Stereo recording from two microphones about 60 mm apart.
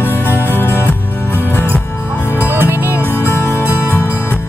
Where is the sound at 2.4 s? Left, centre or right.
Right.